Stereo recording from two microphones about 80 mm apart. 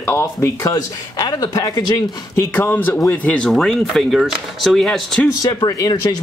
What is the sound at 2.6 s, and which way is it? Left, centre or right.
Speech, left.